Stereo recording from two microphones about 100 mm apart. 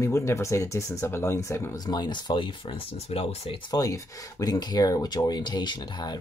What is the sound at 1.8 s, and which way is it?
Speech, 45° left (ahead or behind).